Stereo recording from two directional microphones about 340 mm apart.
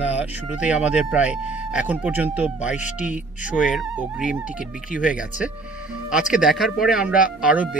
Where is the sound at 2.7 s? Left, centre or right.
Left.